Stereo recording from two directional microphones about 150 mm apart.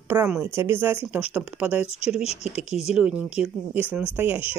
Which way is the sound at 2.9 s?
5° right (ahead or behind).